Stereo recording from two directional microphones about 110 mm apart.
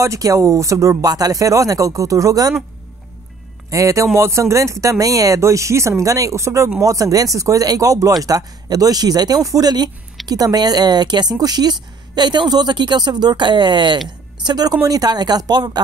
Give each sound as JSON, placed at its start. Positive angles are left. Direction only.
{"t": 0.0, "sound": "a woman's voice", "side_deg": -30}
{"t": 3.7, "sound": "a woman's voice", "side_deg": -30}